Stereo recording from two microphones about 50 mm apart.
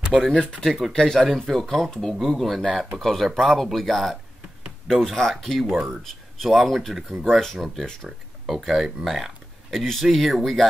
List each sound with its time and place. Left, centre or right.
0.4 s speech: centre
0.7 s speech: centre
7.5 s speech: centre
7.8 s speech: centre
8.5 s speech: centre